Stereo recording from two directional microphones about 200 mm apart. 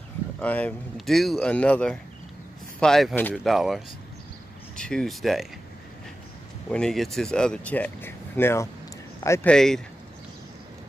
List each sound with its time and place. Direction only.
0.4 s speech: 5° left (ahead or behind)
6.7 s speech: 5° left (ahead or behind)